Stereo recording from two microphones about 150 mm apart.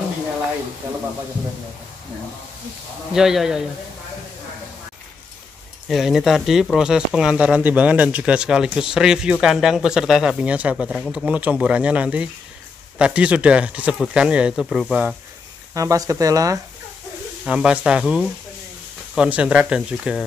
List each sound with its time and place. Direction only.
3.1 s a man's voice: 5° right (ahead or behind)
5.9 s a man's voice: centre (ahead or behind)
15.7 s speech: 20° right (ahead or behind)
17.5 s speech: 5° right (ahead or behind)